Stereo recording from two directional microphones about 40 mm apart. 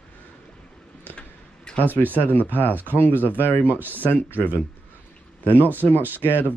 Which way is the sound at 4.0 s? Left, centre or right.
Left.